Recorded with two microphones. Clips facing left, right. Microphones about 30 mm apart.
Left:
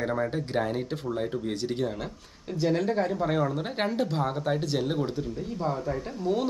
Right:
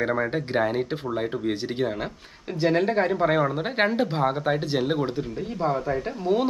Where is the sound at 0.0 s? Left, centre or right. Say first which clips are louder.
Right 4 dB; right.